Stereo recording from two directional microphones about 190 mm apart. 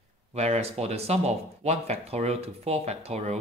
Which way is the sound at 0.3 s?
35° right (ahead or behind).